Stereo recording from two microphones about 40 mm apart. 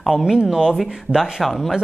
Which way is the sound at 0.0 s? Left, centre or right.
Centre.